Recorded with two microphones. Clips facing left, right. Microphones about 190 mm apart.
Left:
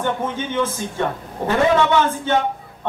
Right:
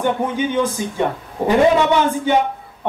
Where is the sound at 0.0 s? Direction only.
15° right (ahead or behind).